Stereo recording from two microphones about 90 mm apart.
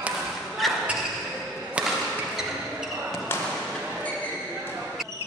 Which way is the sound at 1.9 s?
5° right (ahead or behind).